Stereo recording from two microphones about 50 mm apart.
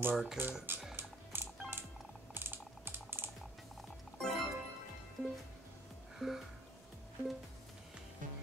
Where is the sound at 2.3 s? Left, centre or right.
Right.